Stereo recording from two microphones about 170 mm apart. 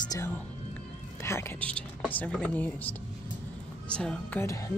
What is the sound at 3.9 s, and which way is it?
Speech, 5° left (ahead or behind).